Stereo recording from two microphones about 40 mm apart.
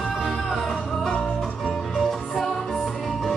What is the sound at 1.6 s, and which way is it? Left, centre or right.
Music, centre.